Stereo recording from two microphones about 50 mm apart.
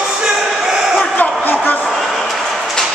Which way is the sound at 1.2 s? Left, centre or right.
Left.